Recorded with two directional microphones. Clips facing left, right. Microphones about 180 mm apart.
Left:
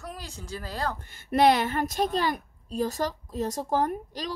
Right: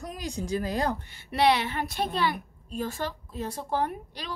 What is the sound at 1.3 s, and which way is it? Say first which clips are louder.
A woman's voice: left 3 dB; 45° left (ahead or behind).